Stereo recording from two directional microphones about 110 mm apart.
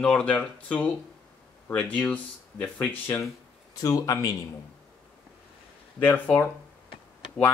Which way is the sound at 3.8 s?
30° left (ahead or behind).